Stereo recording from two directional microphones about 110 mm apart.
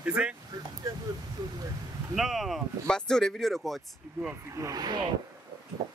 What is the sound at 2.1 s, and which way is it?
Speech, centre (ahead or behind).